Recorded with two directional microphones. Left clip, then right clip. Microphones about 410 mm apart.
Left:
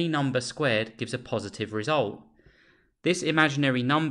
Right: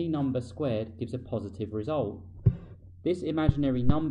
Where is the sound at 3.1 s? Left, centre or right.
Left.